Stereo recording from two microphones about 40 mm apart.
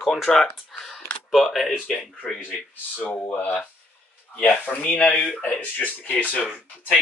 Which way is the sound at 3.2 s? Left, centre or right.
Left.